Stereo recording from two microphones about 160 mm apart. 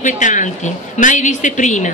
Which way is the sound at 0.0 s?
50° left (ahead or behind).